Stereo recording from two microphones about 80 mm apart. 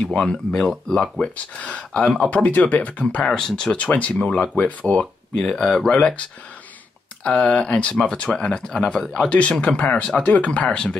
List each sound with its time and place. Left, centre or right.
0.1 s speech: centre
3.3 s speech: centre
5.5 s speech: centre
7.2 s speech: centre
9.3 s speech: centre